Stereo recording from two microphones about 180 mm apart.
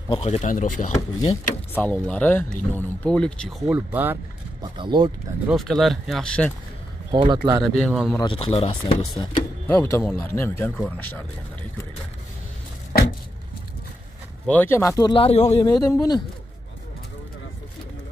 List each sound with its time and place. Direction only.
0.1 s speech: 35° left (ahead or behind)
1.7 s speech: 10° left (ahead or behind); by 4.2 s 10° right (ahead or behind)
4.6 s speech: 25° right (ahead or behind)
5.5 s speech: centre (ahead or behind)
7.1 s speech: 25° right (ahead or behind)
7.6 s speech: 5° left (ahead or behind)
8.2 s speech: 30° left (ahead or behind)
9.7 s speech: 15° left (ahead or behind)
14.4 s speech: 10° left (ahead or behind)